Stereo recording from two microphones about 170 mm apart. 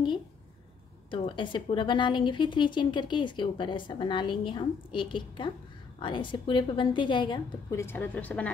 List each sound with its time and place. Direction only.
1.1 s a woman's voice: 30° left (ahead or behind)
7.8 s a woman's voice: 10° left (ahead or behind)